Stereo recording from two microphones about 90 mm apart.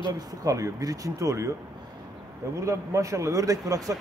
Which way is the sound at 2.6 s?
35° right (ahead or behind).